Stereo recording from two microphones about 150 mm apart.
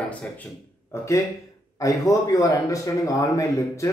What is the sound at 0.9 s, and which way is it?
A man's voice, 20° left (ahead or behind).